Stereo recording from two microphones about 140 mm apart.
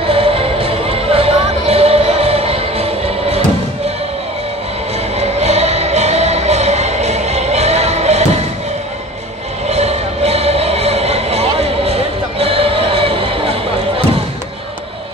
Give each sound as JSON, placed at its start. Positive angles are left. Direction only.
{"t": 0.0, "sound": "music", "side_deg": -45}
{"t": 5.1, "sound": "music", "side_deg": -50}
{"t": 9.7, "sound": "music", "side_deg": -50}